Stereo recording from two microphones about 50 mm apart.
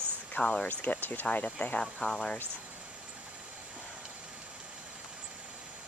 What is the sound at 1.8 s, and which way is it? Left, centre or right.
Speech, centre.